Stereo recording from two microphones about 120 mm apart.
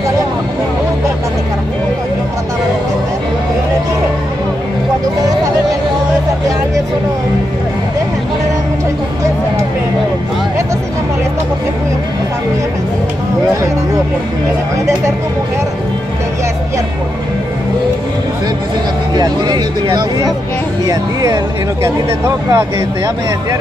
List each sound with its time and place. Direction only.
19.1 s speech: 35° right (ahead or behind)